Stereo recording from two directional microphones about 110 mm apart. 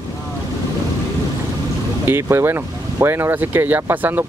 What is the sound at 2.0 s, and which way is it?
Speech, 20° right (ahead or behind).